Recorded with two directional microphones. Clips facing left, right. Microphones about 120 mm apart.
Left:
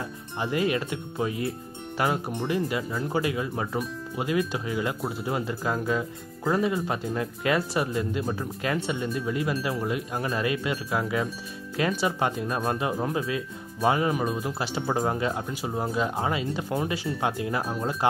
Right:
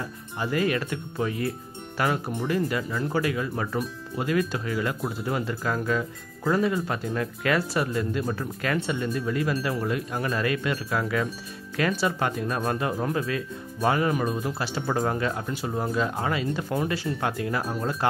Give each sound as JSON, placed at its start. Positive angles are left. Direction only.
{"t": 0.4, "sound": "speech", "side_deg": 20}